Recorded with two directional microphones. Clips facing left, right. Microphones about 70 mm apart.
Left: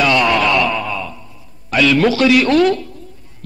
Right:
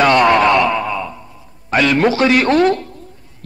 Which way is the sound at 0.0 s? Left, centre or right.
Right.